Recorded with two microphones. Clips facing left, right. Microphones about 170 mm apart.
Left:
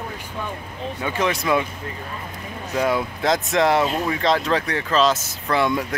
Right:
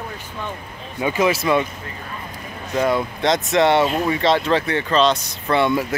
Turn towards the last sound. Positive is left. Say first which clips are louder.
# right 3 dB
turn(degrees=0)  # may be behind; listen again after turning